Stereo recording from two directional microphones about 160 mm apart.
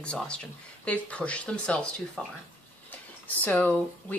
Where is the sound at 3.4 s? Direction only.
10° left (ahead or behind).